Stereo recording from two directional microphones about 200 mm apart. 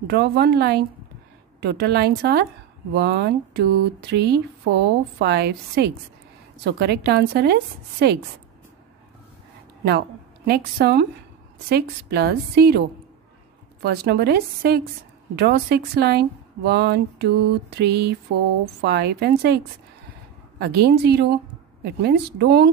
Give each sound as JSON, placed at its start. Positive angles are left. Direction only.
{"t": 0.0, "sound": "speech", "side_deg": -55}
{"t": 9.8, "sound": "a woman's voice", "side_deg": -50}
{"t": 13.8, "sound": "a woman's voice", "side_deg": -55}